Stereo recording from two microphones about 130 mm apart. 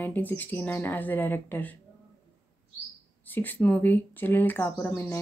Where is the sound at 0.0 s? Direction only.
15° left (ahead or behind).